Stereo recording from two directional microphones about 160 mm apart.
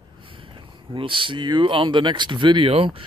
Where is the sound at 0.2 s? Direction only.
35° right (ahead or behind).